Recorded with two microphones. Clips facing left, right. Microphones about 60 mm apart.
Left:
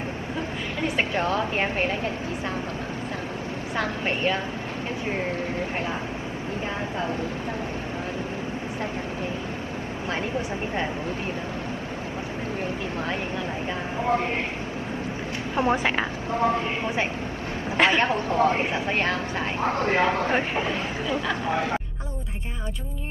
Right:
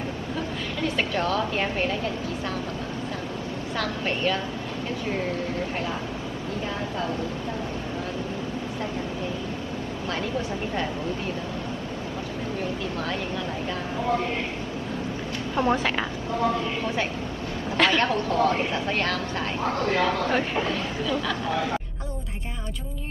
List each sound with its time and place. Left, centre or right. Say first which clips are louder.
0.8 s speech: left 1 dB; left
3.7 s speech: left 1 dB; left
15.5 s speech: left 1 dB; left